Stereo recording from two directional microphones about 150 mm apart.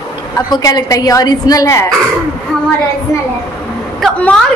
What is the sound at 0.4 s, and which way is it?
A child's voice, 25° left (ahead or behind).